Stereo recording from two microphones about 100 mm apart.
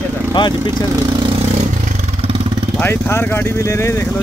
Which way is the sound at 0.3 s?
45° left (ahead or behind).